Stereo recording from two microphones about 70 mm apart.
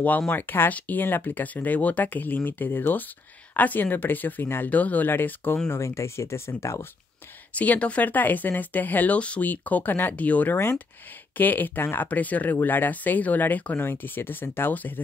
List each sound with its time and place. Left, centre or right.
0.3 s speech: left
5.7 s speech: left
7.5 s speech: left